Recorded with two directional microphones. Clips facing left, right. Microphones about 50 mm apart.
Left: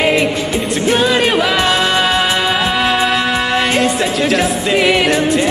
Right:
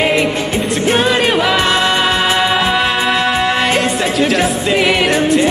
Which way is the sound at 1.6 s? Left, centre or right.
Centre.